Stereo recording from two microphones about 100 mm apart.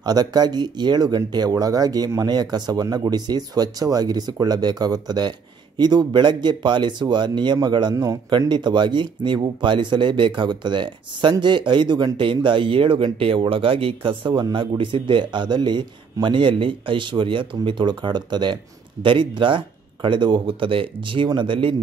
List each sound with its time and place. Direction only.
0.0 s a man's voice: 45° right (ahead or behind)
8.4 s speech: 50° right (ahead or behind)